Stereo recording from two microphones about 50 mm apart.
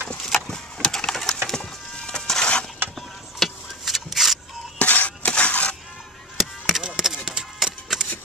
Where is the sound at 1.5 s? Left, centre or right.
Centre.